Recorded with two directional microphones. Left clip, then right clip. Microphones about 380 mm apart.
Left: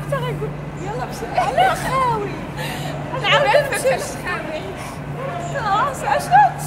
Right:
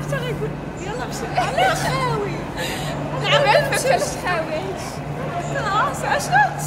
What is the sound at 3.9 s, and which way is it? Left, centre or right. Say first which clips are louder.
Speech: right 1 dB; centre.